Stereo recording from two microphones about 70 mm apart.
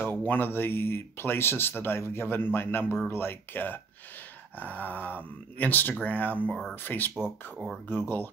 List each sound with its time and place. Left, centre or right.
0.0 s speech: left